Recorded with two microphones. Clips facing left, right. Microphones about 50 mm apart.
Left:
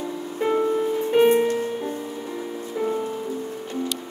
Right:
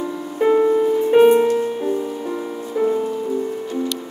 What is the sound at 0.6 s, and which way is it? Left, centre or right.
Music, centre.